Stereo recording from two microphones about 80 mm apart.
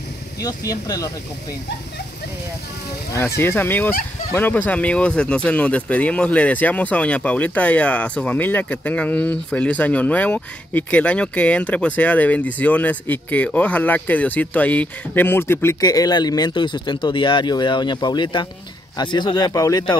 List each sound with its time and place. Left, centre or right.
0.4 s speech: left
3.2 s speech: left
15.8 s speech: left